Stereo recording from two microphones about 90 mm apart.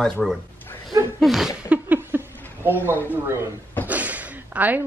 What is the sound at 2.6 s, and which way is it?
Speech, 25° right (ahead or behind).